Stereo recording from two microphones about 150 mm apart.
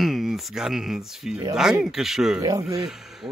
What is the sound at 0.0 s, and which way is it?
Speech, centre (ahead or behind).